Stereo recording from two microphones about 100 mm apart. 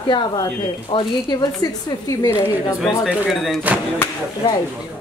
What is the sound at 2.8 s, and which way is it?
Speech, centre (ahead or behind).